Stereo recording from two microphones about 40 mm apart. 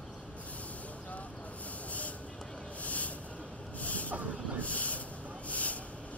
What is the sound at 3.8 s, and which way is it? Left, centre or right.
Snort, left.